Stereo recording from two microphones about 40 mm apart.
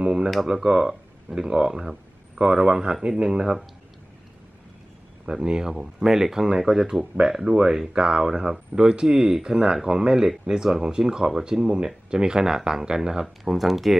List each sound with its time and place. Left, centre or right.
0.0 s a sound: right
0.5 s speech: centre
5.2 s speech: centre
11.6 s speech: right; by 13.9 s centre